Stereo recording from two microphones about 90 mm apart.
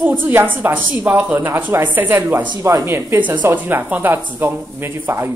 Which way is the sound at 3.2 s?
20° right (ahead or behind).